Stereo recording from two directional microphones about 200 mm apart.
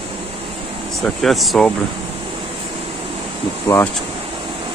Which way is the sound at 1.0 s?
Centre (ahead or behind).